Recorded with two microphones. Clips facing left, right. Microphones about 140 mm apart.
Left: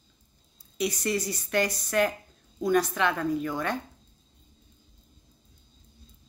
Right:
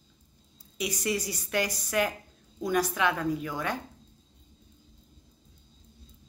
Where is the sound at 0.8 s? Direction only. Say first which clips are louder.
Left 3 dB; 10° right (ahead or behind).